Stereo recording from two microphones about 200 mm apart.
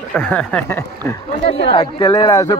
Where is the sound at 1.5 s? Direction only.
30° left (ahead or behind).